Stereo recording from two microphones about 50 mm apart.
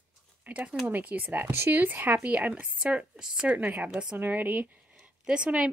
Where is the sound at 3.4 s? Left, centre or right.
Right.